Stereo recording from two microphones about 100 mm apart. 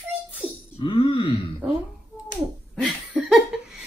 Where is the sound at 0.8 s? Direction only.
55° left (ahead or behind).